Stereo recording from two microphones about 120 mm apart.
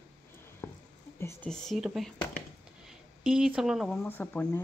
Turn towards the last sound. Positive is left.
turn(degrees=15)  # may be behind; listen again after turning